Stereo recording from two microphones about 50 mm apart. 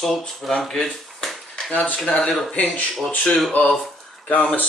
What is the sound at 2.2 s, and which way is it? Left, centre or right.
Speech, centre.